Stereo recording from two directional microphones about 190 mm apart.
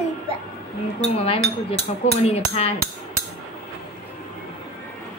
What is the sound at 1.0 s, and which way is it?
Speech, 30° left (ahead or behind).